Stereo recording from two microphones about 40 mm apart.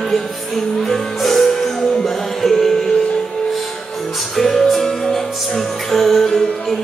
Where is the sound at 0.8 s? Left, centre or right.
Centre.